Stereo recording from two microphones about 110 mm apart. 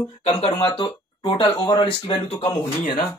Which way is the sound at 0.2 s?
65° left (ahead or behind).